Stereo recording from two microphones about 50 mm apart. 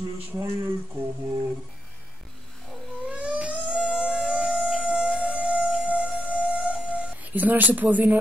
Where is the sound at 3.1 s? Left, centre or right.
Right.